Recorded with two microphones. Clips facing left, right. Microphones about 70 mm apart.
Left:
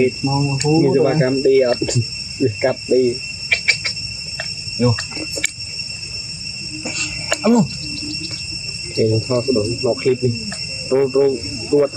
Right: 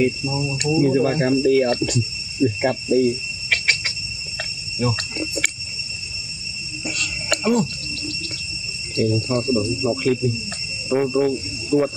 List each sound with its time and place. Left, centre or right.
0.0 s speech: centre
2.4 s cricket: centre
4.7 s speech: centre
7.0 s cricket: centre
8.9 s speech: centre